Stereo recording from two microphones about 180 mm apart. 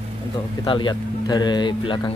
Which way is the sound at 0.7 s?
25° left (ahead or behind).